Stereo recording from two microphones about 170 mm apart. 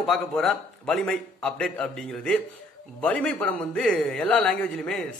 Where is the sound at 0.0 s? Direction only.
Centre (ahead or behind).